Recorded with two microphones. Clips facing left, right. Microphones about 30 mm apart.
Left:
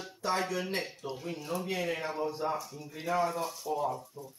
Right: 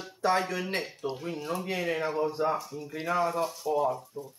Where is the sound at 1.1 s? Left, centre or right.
Centre.